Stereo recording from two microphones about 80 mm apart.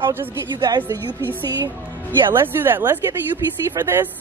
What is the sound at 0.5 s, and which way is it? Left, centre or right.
Speech, right.